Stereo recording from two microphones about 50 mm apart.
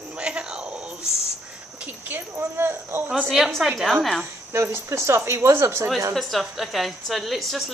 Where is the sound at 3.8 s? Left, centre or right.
Centre.